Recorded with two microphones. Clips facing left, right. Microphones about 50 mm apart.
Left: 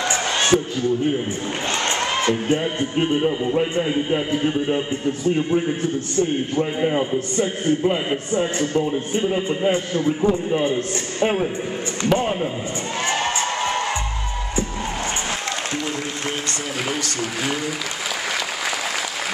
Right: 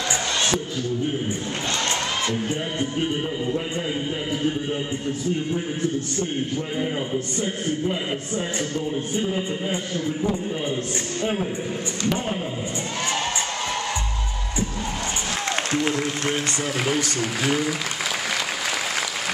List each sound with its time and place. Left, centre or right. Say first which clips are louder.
0.1 s music: left 5 dB; left
1.9 s speech: left 4 dB; left
6.8 s a man's voice: left 6 dB; left
8.4 s a man's voice: left 7 dB; left
16.8 s speech: right 1 dB; centre